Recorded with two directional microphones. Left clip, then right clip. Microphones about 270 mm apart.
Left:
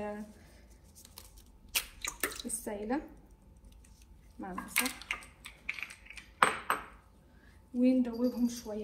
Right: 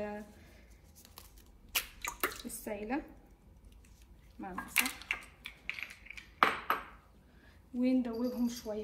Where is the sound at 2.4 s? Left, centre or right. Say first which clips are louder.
Left 2 dB; centre.